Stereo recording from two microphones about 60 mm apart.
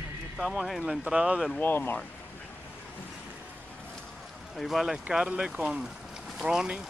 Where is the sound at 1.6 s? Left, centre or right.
Left.